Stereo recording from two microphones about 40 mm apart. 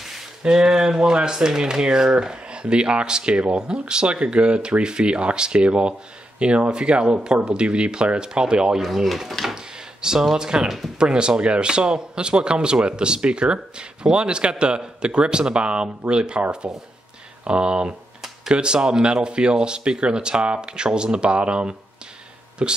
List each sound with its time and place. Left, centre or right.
0.4 s speech: centre
8.8 s speech: centre
10.3 s speech: centre